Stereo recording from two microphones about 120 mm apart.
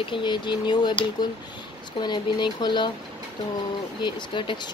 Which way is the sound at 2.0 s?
40° left (ahead or behind).